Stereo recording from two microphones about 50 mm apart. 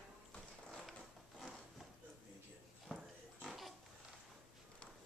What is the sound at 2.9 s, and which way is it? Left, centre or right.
Pig, centre.